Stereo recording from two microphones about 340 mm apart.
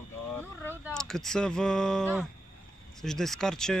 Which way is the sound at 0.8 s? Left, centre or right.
Centre.